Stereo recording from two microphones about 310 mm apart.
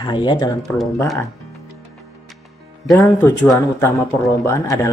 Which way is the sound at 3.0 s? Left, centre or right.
Centre.